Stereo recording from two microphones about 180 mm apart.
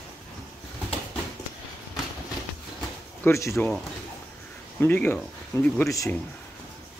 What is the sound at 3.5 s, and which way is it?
Speech, 5° left (ahead or behind).